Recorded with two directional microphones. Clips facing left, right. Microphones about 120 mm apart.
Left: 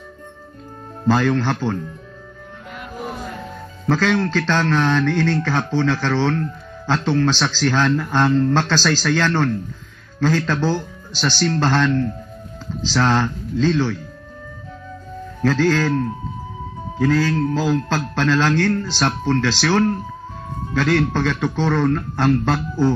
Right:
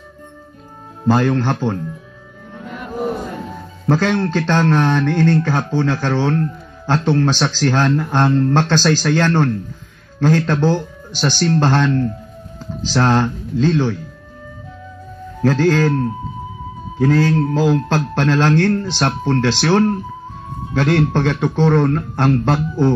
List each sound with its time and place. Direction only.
1.0 s a man's voice: 15° right (ahead or behind)
3.9 s a man's voice: 15° right (ahead or behind)
15.4 s a man's voice: 15° right (ahead or behind)
17.0 s speech: 20° right (ahead or behind)